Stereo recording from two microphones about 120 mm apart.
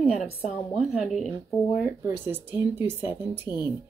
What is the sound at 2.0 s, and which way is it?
Speech, 15° right (ahead or behind).